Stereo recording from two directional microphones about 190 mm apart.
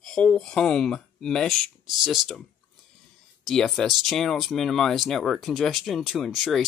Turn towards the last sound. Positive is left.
turn(degrees=0)  # may be behind; listen again after turning